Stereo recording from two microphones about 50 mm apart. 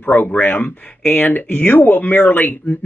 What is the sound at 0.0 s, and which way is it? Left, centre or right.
Speech, left.